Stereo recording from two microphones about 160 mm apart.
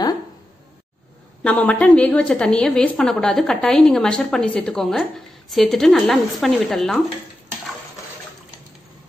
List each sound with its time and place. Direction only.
1.4 s a woman's voice: 10° left (ahead or behind)